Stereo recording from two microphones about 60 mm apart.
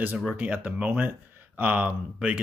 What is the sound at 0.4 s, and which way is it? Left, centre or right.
Speech, right.